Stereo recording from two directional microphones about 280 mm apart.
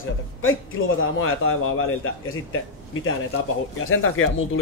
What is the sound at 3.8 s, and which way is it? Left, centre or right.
Speech, left.